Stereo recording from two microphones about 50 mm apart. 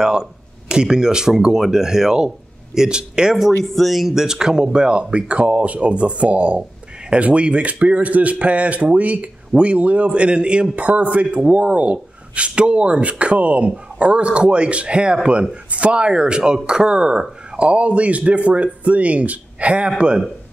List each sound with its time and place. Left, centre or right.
0.0 s speech: centre
3.6 s speech: centre; by 19.9 s right